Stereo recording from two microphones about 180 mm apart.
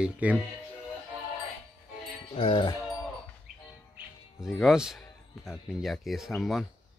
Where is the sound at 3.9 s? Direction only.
Centre (ahead or behind).